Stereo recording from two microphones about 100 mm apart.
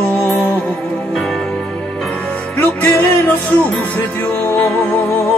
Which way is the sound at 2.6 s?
20° left (ahead or behind).